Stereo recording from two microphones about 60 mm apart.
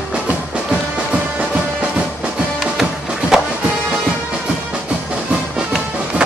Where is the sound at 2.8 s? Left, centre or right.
Centre.